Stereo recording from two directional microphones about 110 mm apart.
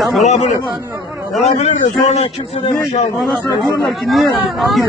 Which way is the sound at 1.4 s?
80° left.